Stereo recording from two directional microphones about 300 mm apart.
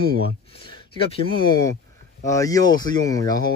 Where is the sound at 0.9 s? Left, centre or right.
Centre.